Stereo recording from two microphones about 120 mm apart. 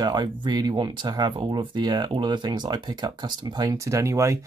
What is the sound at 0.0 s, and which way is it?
Speech, 35° right (ahead or behind).